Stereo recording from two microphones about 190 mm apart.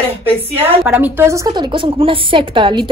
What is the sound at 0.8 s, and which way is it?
A woman's voice, 10° right (ahead or behind).